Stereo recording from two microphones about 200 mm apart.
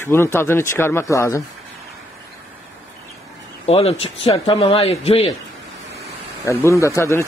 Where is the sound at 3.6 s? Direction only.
30° left (ahead or behind).